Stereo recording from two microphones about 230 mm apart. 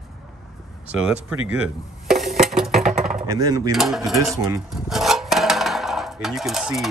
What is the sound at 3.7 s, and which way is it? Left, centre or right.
Speech, centre.